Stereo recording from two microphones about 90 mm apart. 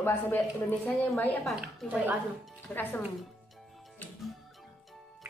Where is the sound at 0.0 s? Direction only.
20° left (ahead or behind).